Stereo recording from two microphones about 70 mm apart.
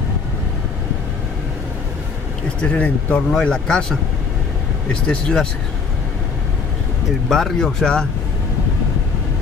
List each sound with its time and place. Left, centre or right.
2.6 s speech: centre
5.0 s speech: centre
7.2 s speech: centre